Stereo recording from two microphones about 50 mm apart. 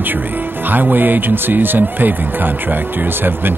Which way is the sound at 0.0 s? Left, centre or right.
Right.